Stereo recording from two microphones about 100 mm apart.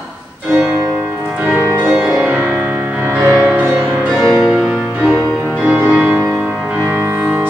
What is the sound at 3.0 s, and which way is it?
Music, 25° right (ahead or behind).